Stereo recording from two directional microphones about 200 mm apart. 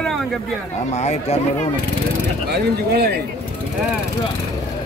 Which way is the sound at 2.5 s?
55° right (ahead or behind).